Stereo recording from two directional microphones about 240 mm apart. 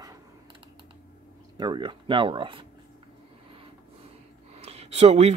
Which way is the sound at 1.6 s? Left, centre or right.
Centre.